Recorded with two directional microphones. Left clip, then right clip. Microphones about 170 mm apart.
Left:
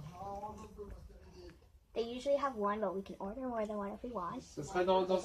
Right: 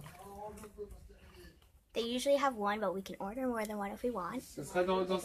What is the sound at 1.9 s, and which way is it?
Speech, 35° right (ahead or behind).